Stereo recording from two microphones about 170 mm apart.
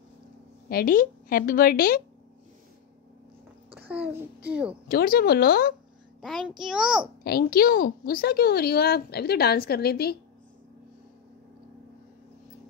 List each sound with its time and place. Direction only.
0.7 s a woman's voice: 55° left (ahead or behind)
3.7 s a child's voice: 10° right (ahead or behind)
4.8 s a woman's voice: 60° left (ahead or behind)
6.2 s a child's voice: centre (ahead or behind)
7.2 s a woman's voice: 65° left (ahead or behind)